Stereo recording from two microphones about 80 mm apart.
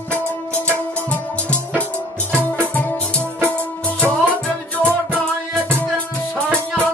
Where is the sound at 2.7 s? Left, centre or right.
Centre.